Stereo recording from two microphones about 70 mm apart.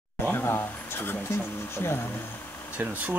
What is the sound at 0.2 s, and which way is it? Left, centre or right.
Speech, left.